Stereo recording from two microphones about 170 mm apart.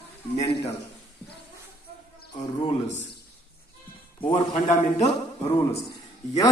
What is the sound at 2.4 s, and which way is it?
Speech, 25° left (ahead or behind).